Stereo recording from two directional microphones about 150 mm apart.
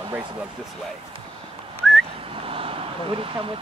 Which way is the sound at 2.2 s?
40° right (ahead or behind).